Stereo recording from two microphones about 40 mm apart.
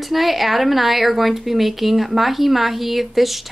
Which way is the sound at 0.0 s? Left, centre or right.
Centre.